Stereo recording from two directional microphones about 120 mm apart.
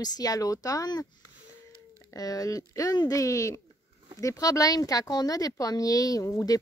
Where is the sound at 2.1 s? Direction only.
30° left (ahead or behind).